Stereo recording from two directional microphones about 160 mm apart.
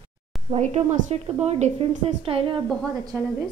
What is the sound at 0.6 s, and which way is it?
A woman's voice, 40° right (ahead or behind).